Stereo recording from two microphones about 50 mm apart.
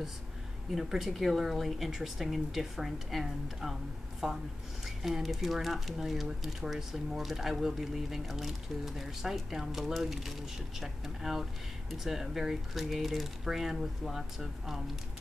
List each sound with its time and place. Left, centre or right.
0.7 s speech: centre